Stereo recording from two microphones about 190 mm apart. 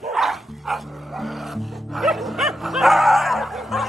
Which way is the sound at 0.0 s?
Centre (ahead or behind).